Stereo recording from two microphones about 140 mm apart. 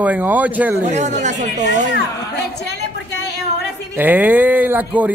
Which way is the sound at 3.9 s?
10° right (ahead or behind).